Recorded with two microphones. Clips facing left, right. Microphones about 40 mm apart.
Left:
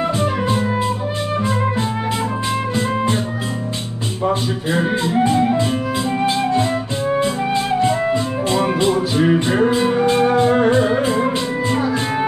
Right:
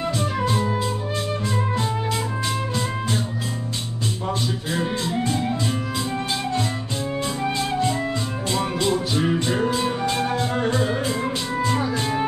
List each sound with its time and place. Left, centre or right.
0.2 s music: left
4.3 s music: left